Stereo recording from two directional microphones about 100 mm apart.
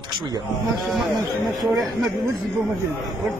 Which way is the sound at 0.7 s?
Centre (ahead or behind).